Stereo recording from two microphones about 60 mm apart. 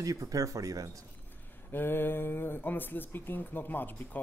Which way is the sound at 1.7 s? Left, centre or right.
Left.